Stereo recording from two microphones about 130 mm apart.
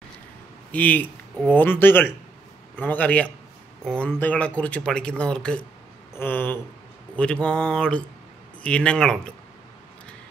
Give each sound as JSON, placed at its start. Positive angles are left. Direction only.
{"t": 0.7, "sound": "speech", "side_deg": 10}